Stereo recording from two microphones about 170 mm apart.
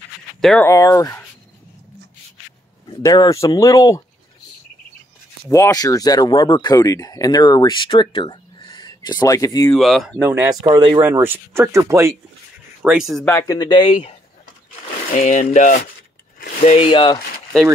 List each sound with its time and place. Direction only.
0.4 s speech: 5° left (ahead or behind)
0.7 s speech: 20° left (ahead or behind)
3.0 s speech: 20° left (ahead or behind)
5.5 s speech: 20° left (ahead or behind)
9.7 s speech: centre (ahead or behind)
10.2 s speech: 15° right (ahead or behind)
10.7 s speech: 25° right (ahead or behind)
11.0 s speech: 15° right (ahead or behind)
12.8 s speech: 5° right (ahead or behind)
13.3 s speech: 15° left (ahead or behind)
15.1 s speech: 45° left (ahead or behind)
16.6 s speech: 35° left (ahead or behind)